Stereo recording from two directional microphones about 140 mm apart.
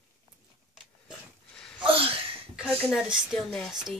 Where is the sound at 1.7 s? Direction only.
40° right (ahead or behind).